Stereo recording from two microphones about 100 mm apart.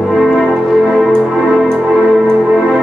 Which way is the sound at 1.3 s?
Centre (ahead or behind).